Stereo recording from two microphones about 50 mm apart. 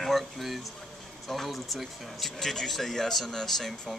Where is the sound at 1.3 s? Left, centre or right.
Centre.